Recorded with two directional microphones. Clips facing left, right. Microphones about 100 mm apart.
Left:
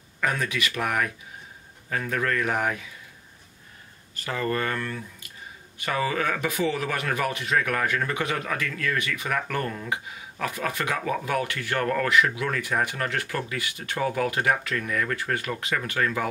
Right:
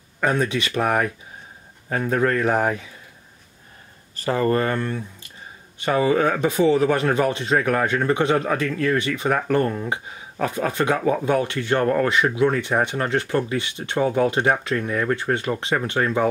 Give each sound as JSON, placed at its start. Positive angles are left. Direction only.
{"t": 0.2, "sound": "speech", "side_deg": -30}
{"t": 4.1, "sound": "speech", "side_deg": -35}